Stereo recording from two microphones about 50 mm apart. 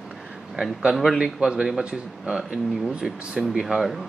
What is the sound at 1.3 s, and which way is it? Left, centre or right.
Speech, centre.